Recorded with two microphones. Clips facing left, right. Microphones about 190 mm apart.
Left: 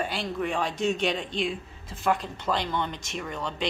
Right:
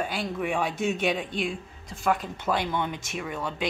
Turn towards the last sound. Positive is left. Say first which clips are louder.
# right 1 dB
turn(degrees=-5)  # may be behind; listen again after turning